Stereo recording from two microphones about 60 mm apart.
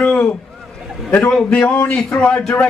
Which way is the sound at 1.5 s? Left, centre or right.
Left.